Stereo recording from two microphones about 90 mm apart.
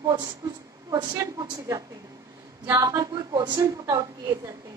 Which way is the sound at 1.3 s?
50° right (ahead or behind).